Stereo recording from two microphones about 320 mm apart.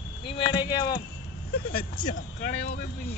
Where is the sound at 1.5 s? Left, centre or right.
Left.